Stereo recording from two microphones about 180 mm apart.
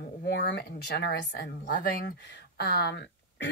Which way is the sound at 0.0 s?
70° left (ahead or behind).